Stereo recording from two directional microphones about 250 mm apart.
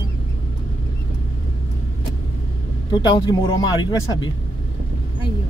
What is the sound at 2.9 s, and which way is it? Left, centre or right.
Speech, centre.